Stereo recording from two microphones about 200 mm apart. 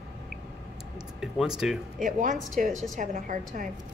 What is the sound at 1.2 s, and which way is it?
Speech, centre (ahead or behind).